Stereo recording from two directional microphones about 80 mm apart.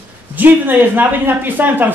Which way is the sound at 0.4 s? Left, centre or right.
Right.